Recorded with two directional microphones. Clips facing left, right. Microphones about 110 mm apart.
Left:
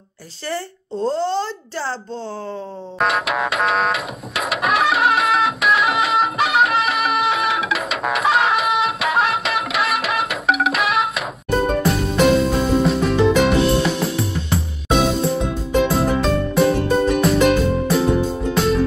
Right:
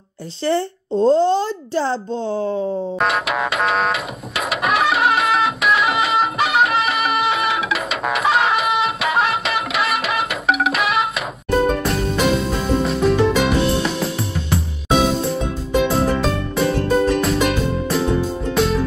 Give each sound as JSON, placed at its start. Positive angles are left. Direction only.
{"t": 0.5, "sound": "speech", "side_deg": -20}
{"t": 3.0, "sound": "music", "side_deg": 0}